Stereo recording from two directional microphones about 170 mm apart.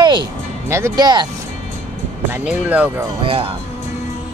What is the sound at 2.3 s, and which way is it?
Speech, 10° right (ahead or behind).